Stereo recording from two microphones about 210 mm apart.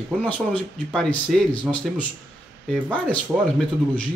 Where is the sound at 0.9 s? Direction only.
5° left (ahead or behind).